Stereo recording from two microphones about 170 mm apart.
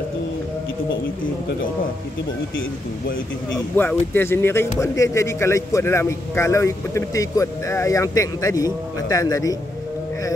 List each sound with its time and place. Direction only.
3.5 s speech: 10° left (ahead or behind)